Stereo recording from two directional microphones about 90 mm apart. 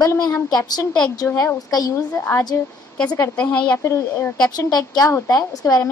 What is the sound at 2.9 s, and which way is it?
Speech, 10° left (ahead or behind).